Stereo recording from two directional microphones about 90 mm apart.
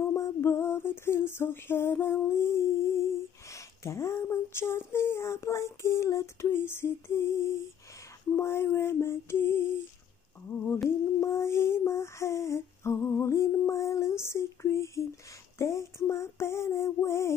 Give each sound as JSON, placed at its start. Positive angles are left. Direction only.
{"t": 0.1, "sound": "female singing", "side_deg": 30}
{"t": 8.4, "sound": "a sound", "side_deg": 30}
{"t": 11.1, "sound": "lullaby", "side_deg": 30}